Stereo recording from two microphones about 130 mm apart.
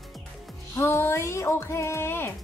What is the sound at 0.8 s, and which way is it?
Speech, 20° left (ahead or behind).